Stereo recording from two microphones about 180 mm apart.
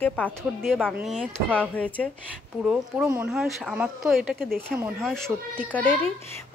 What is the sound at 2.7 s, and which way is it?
Speech, 10° right (ahead or behind).